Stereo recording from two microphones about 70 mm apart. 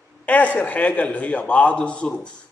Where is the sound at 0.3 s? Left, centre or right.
Left.